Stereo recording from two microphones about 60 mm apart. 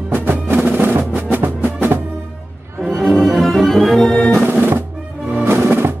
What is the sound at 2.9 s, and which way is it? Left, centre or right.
Music, centre.